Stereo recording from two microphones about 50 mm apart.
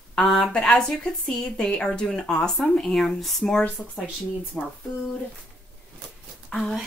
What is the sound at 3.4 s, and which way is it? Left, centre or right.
Speech, centre.